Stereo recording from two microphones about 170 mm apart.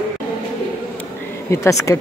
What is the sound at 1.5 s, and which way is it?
Speech, 20° left (ahead or behind).